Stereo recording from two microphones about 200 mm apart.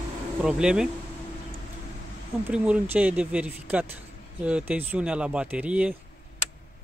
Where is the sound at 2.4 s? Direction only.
5° right (ahead or behind).